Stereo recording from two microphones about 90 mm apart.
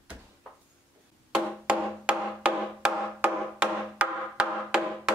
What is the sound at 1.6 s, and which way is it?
Music, 10° right (ahead or behind).